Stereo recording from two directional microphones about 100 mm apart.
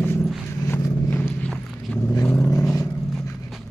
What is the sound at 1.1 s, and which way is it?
Horse, 15° left (ahead or behind).